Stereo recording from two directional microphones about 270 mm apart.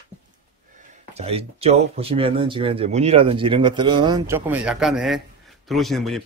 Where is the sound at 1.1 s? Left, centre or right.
Right; by 6.2 s centre.